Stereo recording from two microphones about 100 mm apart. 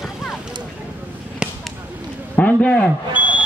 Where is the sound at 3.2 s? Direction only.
15° right (ahead or behind).